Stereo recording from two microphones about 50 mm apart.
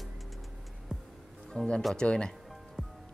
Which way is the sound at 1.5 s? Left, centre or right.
Left.